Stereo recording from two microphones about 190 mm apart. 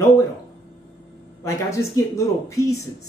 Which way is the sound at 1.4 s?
15° left (ahead or behind).